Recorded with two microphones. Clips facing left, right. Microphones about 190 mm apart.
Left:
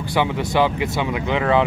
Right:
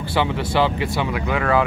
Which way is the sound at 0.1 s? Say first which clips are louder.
Left 1 dB; 20° left (ahead or behind).